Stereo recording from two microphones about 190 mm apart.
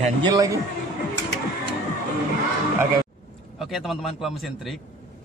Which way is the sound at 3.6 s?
Centre (ahead or behind).